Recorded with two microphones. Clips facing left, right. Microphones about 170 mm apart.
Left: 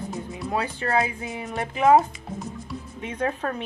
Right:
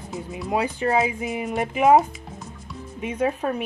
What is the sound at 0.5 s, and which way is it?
Speech, 15° right (ahead or behind).